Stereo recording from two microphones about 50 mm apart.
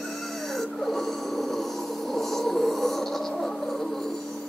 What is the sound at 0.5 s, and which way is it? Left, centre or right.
Snoring, centre.